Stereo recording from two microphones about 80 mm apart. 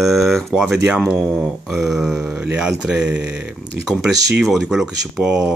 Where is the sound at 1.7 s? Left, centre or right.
Centre.